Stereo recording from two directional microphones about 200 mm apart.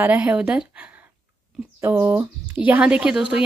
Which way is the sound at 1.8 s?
10° right (ahead or behind).